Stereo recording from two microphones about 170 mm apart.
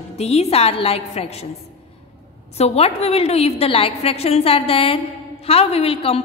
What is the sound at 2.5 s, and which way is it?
A woman's voice, 35° left (ahead or behind).